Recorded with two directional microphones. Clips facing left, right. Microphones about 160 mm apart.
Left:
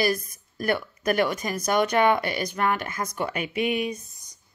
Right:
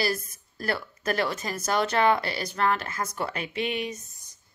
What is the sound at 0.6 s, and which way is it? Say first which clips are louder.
Speech: left 4 dB; 15° left (ahead or behind).